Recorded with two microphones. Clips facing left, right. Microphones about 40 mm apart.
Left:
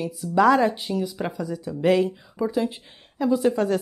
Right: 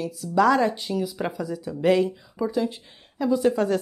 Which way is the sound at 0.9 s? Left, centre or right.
Centre.